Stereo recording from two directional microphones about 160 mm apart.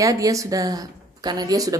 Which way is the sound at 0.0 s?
20° right (ahead or behind).